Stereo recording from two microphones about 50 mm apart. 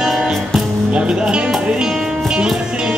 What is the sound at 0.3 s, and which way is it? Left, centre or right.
Music, centre.